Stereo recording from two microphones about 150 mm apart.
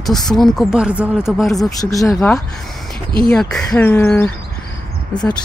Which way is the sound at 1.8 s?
20° left (ahead or behind).